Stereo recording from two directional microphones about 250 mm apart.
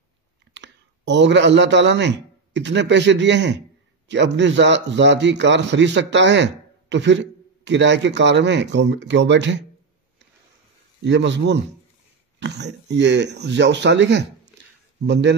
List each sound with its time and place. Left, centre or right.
0.5 s a man's voice: right
11.0 s a man's voice: right